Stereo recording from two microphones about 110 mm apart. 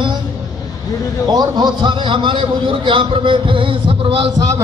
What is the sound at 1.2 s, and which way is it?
A man's voice, 40° right (ahead or behind).